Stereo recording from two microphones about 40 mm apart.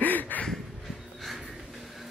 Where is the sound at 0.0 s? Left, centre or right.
Left.